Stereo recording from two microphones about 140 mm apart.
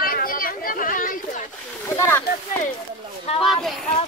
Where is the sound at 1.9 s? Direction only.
20° left (ahead or behind).